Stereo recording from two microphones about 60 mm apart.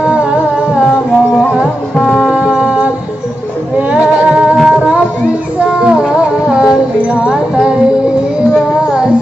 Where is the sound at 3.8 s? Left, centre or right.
Right.